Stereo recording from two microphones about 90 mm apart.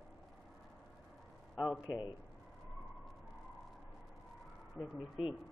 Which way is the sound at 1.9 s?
55° left (ahead or behind).